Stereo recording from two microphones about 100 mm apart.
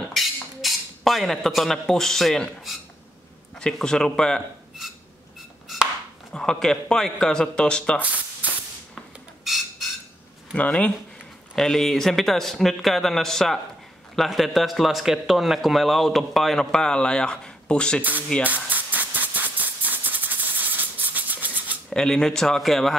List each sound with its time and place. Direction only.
0.1 s a man's voice: centre (ahead or behind)
6.3 s a man's voice: 5° left (ahead or behind)
8.0 s spray: 15° right (ahead or behind)
9.4 s a sound: centre (ahead or behind)
10.5 s a man's voice: 15° left (ahead or behind)
18.4 s a sound: 15° right (ahead or behind)
21.9 s speech: 5° left (ahead or behind)